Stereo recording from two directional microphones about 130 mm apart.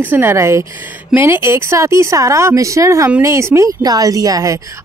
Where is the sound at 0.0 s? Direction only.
15° right (ahead or behind).